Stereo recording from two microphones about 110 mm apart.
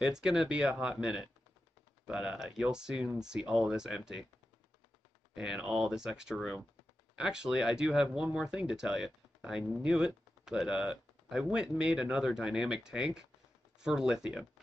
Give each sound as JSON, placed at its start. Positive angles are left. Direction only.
{"t": 0.0, "sound": "speech", "side_deg": -5}
{"t": 5.3, "sound": "speech", "side_deg": -5}